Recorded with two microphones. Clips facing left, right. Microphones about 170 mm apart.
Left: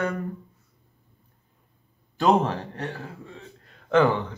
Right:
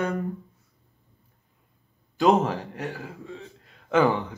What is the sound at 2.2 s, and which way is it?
A man's voice, centre (ahead or behind).